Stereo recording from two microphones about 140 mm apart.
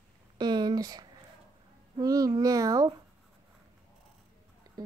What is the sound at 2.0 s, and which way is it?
Speech, 25° right (ahead or behind).